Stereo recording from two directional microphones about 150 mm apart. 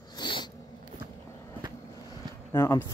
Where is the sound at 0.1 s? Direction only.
30° left (ahead or behind).